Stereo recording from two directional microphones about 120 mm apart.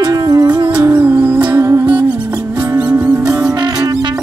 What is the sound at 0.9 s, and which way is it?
Music, 10° right (ahead or behind).